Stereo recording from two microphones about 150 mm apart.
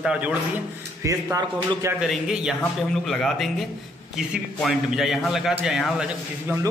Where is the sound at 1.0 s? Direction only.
20° right (ahead or behind).